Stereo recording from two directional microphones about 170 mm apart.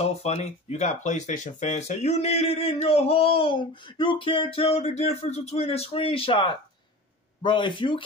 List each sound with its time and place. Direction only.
0.0 s speech: 40° left (ahead or behind)